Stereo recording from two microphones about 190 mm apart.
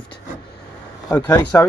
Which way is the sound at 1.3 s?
15° left (ahead or behind).